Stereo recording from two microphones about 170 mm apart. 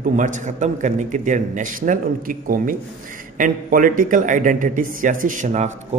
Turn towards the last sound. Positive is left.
turn(degrees=-45)  # may be behind; listen again after turning